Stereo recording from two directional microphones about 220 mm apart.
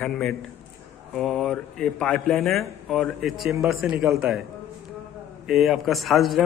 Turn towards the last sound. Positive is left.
turn(degrees=0)  # may be behind; listen again after turning